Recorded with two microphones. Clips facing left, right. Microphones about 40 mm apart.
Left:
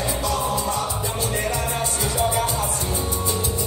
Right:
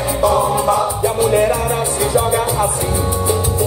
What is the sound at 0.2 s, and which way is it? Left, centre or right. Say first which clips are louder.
Music: right 13 dB; right.